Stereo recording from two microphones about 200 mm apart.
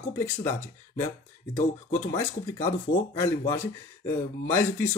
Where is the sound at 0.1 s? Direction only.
10° left (ahead or behind).